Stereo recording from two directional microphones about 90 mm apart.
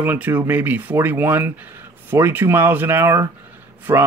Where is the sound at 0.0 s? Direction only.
20° right (ahead or behind).